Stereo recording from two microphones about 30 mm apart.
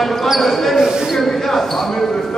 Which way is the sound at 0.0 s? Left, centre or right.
Centre.